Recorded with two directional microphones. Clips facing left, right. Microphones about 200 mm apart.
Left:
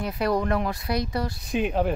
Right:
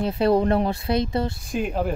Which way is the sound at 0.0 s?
25° right (ahead or behind).